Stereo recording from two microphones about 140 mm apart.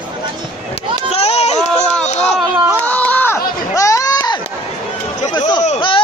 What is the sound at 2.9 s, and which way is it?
Crowd, 10° left (ahead or behind).